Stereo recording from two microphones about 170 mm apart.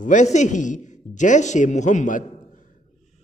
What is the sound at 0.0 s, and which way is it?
Speech, 45° left (ahead or behind).